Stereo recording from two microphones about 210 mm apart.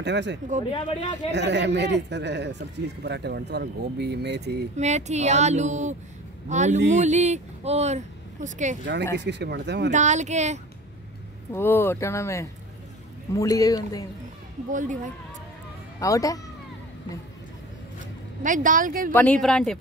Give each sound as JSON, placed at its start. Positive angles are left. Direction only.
{"t": 0.0, "sound": "speech", "side_deg": -55}
{"t": 0.7, "sound": "speech", "side_deg": 25}
{"t": 1.3, "sound": "speech", "side_deg": -55}
{"t": 4.7, "sound": "speech", "side_deg": -35}
{"t": 9.2, "sound": "speech", "side_deg": -55}
{"t": 9.8, "sound": "speech", "side_deg": -35}
{"t": 11.5, "sound": "speech", "side_deg": 10}
{"t": 14.7, "sound": "speech", "side_deg": -40}
{"t": 16.0, "sound": "speech", "side_deg": 15}
{"t": 18.4, "sound": "speech", "side_deg": -40}
{"t": 19.1, "sound": "a woman's voice", "side_deg": 5}